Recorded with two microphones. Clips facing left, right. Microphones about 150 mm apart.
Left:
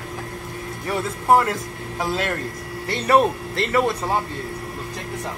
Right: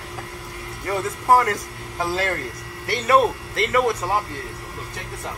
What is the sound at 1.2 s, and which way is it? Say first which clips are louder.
Speech: even; 25° left (ahead or behind).